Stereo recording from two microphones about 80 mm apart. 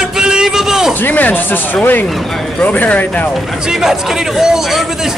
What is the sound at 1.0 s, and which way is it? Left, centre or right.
Speech, left.